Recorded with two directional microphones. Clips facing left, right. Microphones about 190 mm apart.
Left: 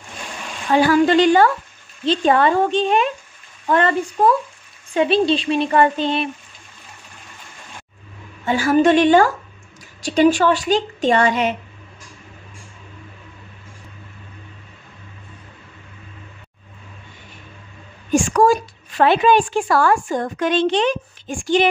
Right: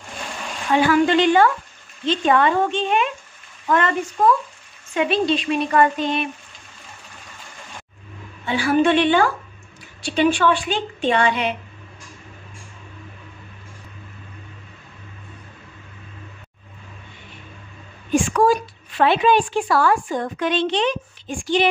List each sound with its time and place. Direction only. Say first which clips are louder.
0.7 s a woman's voice: left 3 dB; 35° left (ahead or behind)
4.9 s speech: left 3 dB; 30° left (ahead or behind)
8.5 s a woman's voice: left 3 dB; 45° left (ahead or behind)
18.1 s a woman's voice: left 2 dB; 45° left (ahead or behind)